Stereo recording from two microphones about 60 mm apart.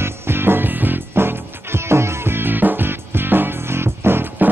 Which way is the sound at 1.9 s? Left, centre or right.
Right.